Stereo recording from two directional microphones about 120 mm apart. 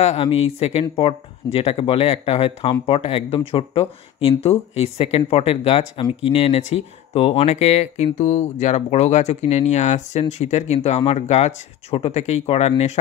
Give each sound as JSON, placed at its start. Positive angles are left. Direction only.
{"t": 0.0, "sound": "speech", "side_deg": 55}